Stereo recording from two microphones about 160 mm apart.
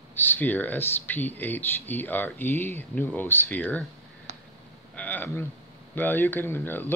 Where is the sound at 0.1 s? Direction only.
10° left (ahead or behind).